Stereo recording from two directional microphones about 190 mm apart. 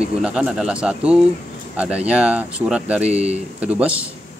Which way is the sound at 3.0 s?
35° right (ahead or behind).